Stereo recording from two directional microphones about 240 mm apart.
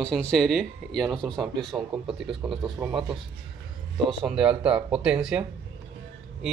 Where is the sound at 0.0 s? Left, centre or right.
Centre.